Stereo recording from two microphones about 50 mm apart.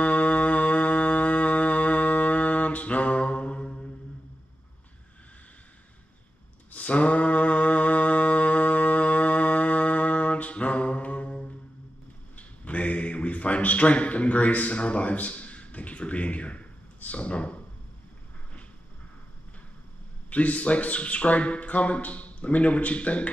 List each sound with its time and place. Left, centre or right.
0.0 s music: left
6.7 s mantra: left
12.4 s a sound: left
20.2 s speech: left